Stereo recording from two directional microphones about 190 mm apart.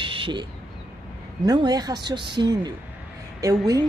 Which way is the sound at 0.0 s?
25° right (ahead or behind).